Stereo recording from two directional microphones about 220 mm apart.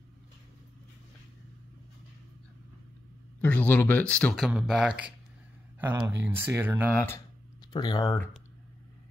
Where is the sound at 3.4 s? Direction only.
10° left (ahead or behind); by 6.9 s 10° right (ahead or behind).